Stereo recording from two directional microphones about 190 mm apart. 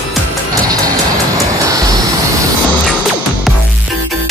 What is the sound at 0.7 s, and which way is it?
Music, 20° right (ahead or behind).